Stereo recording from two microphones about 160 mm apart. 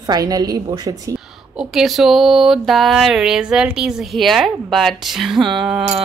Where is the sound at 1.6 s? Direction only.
Centre (ahead or behind).